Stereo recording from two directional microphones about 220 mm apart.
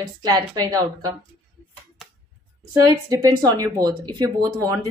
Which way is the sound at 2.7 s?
15° right (ahead or behind).